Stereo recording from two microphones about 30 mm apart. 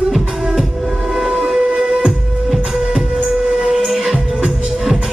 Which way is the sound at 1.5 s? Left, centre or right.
Right.